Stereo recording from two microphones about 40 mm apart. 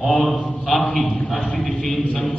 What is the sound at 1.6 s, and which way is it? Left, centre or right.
Speech, centre.